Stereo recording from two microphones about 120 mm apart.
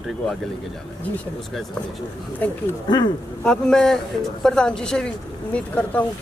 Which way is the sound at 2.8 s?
40° left (ahead or behind).